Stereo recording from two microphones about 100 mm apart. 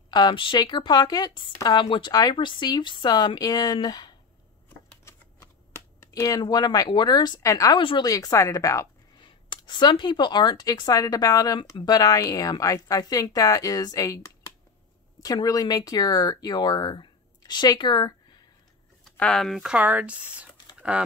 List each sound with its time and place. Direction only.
0.1 s speech: 50° left (ahead or behind)
4.6 s computer keyboard: 25° left (ahead or behind); by 7.3 s 45° left (ahead or behind)
7.3 s speech: 35° left (ahead or behind)
7.7 s speech: 60° left (ahead or behind)
8.0 s speech: 35° left (ahead or behind)
9.2 s speech: 50° left (ahead or behind)
19.1 s speech: 5° left (ahead or behind); by 21.0 s 10° right (ahead or behind)